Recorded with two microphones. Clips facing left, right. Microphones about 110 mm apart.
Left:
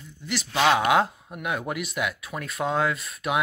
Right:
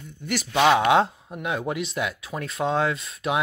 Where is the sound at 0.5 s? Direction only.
15° right (ahead or behind).